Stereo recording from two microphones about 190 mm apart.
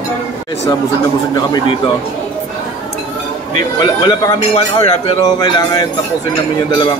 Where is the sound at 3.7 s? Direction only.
25° left (ahead or behind).